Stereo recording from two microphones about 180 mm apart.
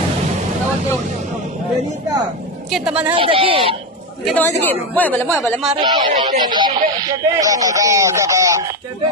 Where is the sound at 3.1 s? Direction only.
30° right (ahead or behind).